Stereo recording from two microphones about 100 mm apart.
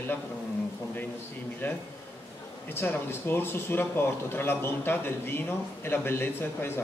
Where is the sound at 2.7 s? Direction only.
20° left (ahead or behind).